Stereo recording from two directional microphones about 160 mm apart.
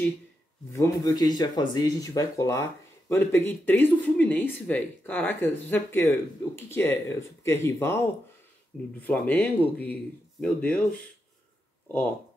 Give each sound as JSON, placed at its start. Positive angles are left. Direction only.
{"t": 0.7, "sound": "speech", "side_deg": 20}
{"t": 9.0, "sound": "speech", "side_deg": 10}